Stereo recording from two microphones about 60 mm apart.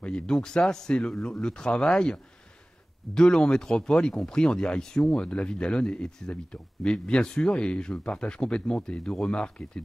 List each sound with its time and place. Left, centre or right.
0.0 s speech: centre